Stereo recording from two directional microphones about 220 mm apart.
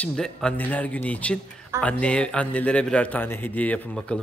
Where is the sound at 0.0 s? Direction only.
5° left (ahead or behind).